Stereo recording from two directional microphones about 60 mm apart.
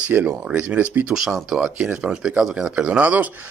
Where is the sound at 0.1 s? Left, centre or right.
Right.